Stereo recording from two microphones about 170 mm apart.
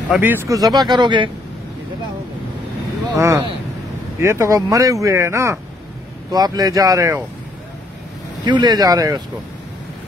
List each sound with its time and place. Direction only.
0.2 s speech: 15° right (ahead or behind)
3.2 s speech: 20° right (ahead or behind)
8.5 s speech: 25° right (ahead or behind)